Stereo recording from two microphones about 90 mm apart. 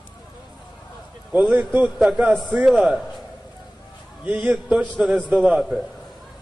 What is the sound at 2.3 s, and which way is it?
A man's voice, centre (ahead or behind).